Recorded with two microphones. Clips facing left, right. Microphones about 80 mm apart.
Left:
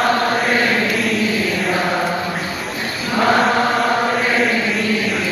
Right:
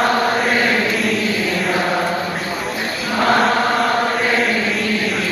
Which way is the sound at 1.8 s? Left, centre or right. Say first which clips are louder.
Right 1 dB; centre.